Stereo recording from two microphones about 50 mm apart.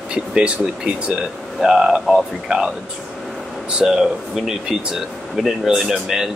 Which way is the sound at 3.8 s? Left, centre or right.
Centre.